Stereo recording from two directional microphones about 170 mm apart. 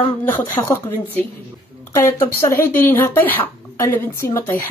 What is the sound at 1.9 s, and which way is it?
Speech, 15° left (ahead or behind).